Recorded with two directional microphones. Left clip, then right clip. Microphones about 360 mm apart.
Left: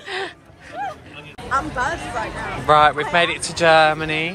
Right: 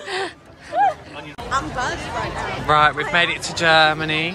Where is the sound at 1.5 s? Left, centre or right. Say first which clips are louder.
Left 2 dB; centre.